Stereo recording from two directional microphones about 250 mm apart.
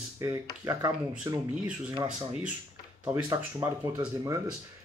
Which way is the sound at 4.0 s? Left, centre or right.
Centre.